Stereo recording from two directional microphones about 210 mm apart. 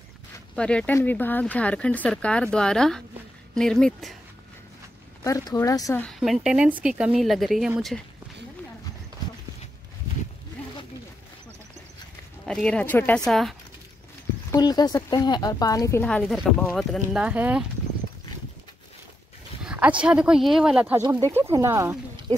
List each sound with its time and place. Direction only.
0.6 s speech: 5° left (ahead or behind)
5.2 s a woman's voice: 15° left (ahead or behind)
6.0 s speech: centre (ahead or behind)
12.4 s speech: 5° left (ahead or behind)
14.5 s a woman's voice: 20° left (ahead or behind); by 17.6 s 5° right (ahead or behind)
19.6 s speech: 5° right (ahead or behind)